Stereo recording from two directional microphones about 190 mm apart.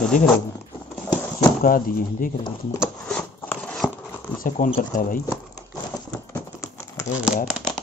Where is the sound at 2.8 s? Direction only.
5° left (ahead or behind).